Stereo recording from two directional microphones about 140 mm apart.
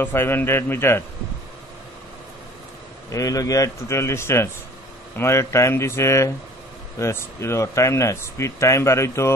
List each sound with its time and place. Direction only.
0.0 s a man's voice: 15° left (ahead or behind)
3.1 s speech: 25° left (ahead or behind)